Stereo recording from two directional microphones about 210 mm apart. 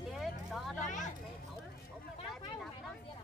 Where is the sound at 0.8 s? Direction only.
35° left (ahead or behind).